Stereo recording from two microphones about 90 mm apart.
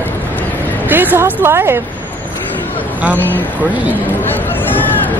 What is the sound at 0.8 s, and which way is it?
Speech, 20° right (ahead or behind).